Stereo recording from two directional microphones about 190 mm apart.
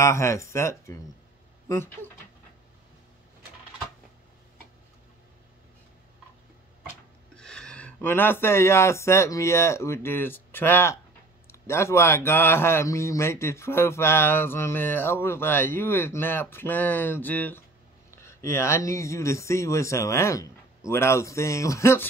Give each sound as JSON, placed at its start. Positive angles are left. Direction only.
{"t": 0.0, "sound": "speech", "side_deg": 15}
{"t": 7.3, "sound": "speech", "side_deg": 5}